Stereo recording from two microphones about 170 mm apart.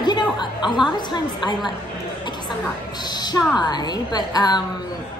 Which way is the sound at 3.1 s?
25° left (ahead or behind).